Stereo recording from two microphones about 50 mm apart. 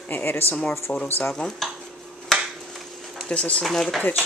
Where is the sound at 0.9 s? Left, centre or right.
Centre.